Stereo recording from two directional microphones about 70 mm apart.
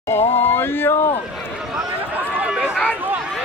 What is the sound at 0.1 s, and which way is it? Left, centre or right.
Speech, left.